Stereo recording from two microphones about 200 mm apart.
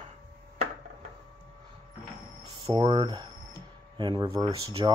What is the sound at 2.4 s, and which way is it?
Speech, 20° right (ahead or behind).